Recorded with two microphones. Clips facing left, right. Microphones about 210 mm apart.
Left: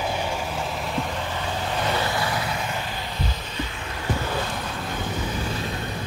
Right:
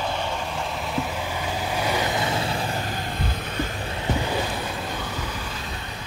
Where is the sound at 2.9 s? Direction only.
50° right (ahead or behind).